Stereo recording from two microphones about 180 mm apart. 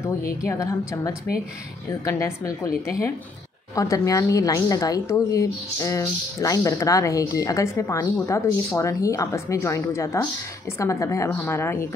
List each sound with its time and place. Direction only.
0.4 s a woman's voice: 15° left (ahead or behind)
3.7 s a woman's voice: 20° left (ahead or behind)